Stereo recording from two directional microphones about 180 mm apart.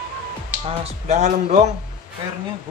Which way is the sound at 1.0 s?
40° right (ahead or behind).